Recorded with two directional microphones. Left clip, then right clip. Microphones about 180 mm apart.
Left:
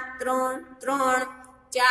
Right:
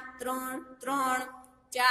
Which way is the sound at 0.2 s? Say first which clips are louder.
Left 9 dB; 40° right (ahead or behind).